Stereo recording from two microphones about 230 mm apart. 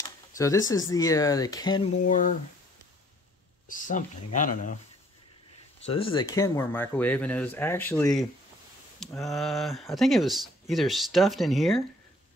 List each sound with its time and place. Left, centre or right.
0.0 s speech: centre
1.9 s speech: left
3.6 s speech: left
5.9 s speech: left; by 11.8 s centre